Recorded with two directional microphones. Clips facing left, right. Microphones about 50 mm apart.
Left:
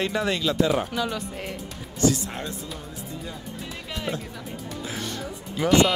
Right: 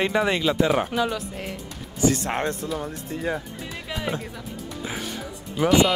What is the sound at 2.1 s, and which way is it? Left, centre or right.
Speech, right.